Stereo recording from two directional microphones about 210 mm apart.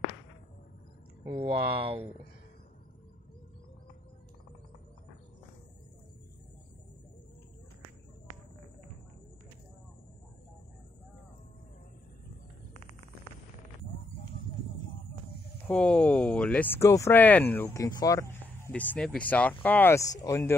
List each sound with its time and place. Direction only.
1.2 s speech: 15° right (ahead or behind)
1.9 s speech: 25° right (ahead or behind)
15.6 s speech: 5° left (ahead or behind)